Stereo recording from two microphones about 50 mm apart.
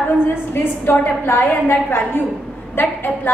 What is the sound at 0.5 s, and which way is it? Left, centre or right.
A woman's voice, left.